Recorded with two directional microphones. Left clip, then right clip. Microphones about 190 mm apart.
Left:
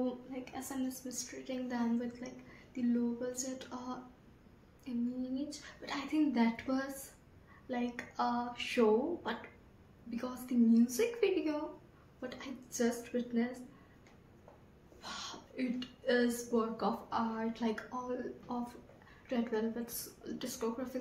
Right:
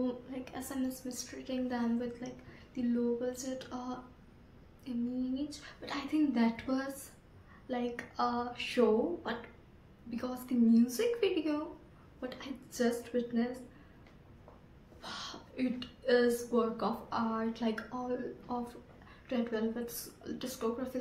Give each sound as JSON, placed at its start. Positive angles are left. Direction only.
{"t": 0.0, "sound": "a woman's voice", "side_deg": -25}
{"t": 5.3, "sound": "a woman's voice", "side_deg": -15}
{"t": 15.0, "sound": "a woman's voice", "side_deg": -15}